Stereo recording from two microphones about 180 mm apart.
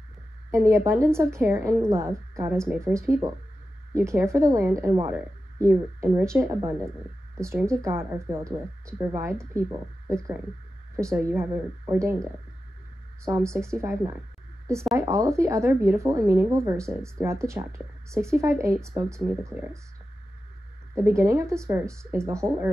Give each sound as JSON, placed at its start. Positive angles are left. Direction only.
{"t": 0.5, "sound": "a woman's voice", "side_deg": -15}
{"t": 13.2, "sound": "a woman's voice", "side_deg": -15}
{"t": 20.9, "sound": "a woman's voice", "side_deg": -15}